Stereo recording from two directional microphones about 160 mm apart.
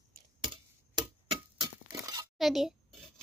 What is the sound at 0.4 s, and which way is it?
Clock, 30° right (ahead or behind).